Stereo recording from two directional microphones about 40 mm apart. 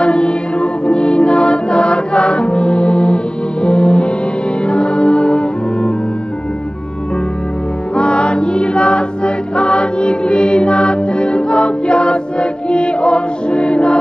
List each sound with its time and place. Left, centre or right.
0.0 s music: left
7.9 s music: left